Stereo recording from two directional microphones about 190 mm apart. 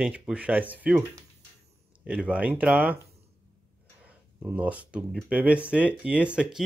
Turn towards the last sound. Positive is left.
turn(degrees=-5)  # may be behind; listen again after turning